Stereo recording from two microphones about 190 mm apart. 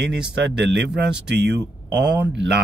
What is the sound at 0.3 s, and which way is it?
Speech, 65° right (ahead or behind).